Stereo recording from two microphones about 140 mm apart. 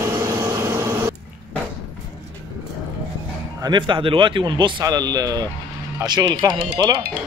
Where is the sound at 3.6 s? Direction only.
35° right (ahead or behind).